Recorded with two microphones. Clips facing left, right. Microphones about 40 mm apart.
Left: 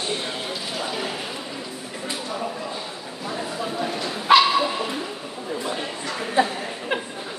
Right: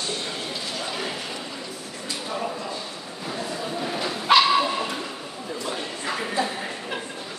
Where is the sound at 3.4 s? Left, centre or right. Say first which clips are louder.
Left 2 dB; centre.